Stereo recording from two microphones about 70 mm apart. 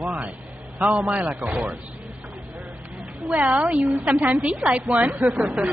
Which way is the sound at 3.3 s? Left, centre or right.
Centre.